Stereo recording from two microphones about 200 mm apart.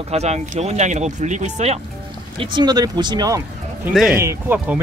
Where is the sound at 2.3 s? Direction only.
25° right (ahead or behind).